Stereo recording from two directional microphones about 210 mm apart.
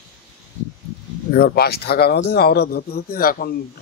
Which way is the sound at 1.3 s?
50° left (ahead or behind).